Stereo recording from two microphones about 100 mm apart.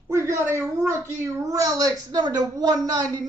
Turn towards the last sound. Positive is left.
turn(degrees=-40)  # may be behind; listen again after turning